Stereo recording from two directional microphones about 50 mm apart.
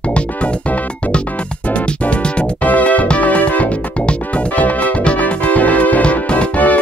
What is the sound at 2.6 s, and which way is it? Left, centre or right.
Music, left.